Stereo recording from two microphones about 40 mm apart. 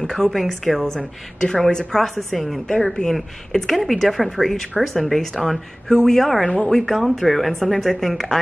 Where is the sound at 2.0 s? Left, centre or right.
Centre.